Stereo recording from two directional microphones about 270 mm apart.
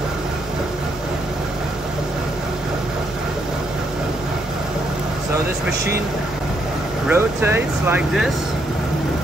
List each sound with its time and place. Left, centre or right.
7.1 s speech: centre